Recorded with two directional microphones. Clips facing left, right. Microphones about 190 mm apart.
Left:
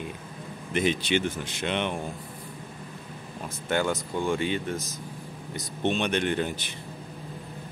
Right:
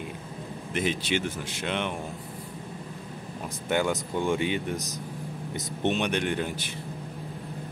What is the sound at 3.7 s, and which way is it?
Speech, 15° right (ahead or behind).